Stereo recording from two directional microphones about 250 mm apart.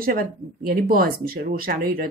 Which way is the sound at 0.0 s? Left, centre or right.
Right.